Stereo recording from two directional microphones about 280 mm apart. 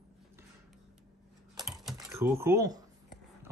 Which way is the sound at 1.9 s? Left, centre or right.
Centre.